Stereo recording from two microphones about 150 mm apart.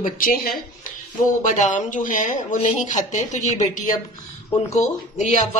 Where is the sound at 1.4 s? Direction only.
55° left (ahead or behind).